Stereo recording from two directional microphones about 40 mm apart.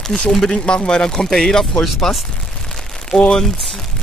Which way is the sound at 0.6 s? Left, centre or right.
Left.